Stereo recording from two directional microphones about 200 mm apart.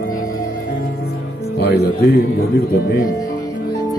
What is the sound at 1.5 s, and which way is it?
Music, 55° left (ahead or behind).